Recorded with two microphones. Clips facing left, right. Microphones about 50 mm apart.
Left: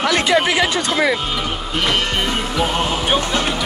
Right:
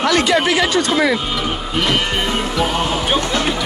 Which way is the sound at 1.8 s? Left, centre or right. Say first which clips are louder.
Even; centre.